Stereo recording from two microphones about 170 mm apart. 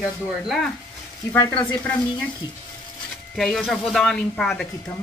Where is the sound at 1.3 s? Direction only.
25° left (ahead or behind).